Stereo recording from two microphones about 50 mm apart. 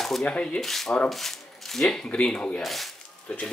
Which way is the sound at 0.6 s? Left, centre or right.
Centre.